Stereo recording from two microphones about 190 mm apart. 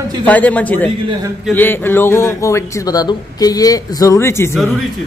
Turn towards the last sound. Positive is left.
turn(degrees=15)  # may be behind; listen again after turning